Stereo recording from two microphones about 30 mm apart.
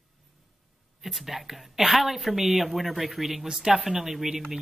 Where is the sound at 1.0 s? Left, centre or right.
Centre.